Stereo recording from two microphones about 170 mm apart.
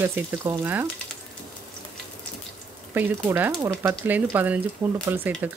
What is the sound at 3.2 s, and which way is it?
Speech, 10° right (ahead or behind).